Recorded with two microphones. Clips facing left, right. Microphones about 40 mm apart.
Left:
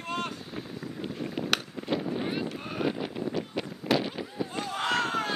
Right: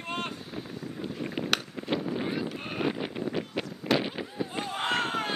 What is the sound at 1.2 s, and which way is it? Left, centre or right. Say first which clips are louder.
Boat: even; centre.